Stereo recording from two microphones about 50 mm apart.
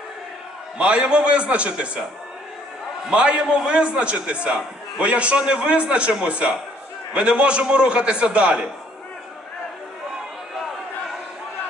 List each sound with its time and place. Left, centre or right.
0.7 s a man's voice: right
3.1 s a man's voice: right